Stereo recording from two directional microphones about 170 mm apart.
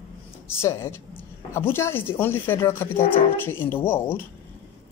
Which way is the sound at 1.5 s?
15° left (ahead or behind).